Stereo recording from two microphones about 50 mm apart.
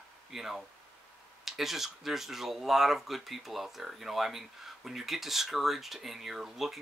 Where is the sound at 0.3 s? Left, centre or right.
Centre.